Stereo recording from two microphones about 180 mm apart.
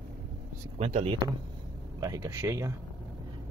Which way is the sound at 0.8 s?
35° right (ahead or behind).